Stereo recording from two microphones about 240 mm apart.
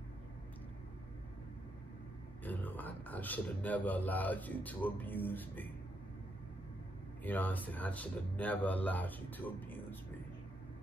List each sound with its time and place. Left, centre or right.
2.4 s a man's voice: centre
7.2 s a man's voice: centre